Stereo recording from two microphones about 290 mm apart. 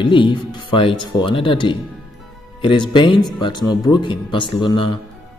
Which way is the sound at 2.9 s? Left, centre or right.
Centre.